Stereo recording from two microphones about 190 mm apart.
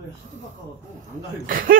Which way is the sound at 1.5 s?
50° right (ahead or behind).